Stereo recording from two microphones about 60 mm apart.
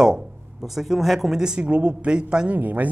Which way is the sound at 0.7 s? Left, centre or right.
Centre.